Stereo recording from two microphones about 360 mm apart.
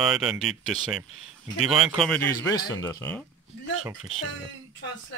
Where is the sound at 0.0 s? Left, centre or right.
Centre.